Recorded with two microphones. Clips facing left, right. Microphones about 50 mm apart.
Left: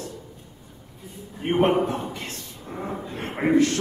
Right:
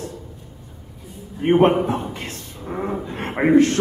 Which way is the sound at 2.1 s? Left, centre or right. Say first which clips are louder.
Right 3 dB; right.